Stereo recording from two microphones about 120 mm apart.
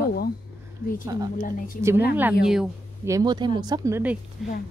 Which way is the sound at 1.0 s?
30° right (ahead or behind).